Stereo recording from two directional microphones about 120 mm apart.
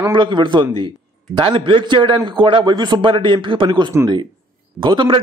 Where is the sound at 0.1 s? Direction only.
40° right (ahead or behind).